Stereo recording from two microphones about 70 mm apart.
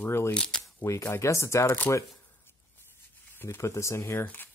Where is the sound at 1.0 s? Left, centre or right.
Left.